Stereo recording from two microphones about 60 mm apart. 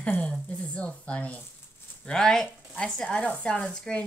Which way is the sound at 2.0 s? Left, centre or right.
Centre.